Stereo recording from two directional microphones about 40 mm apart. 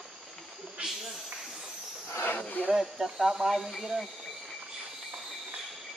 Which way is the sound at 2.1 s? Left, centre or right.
Left.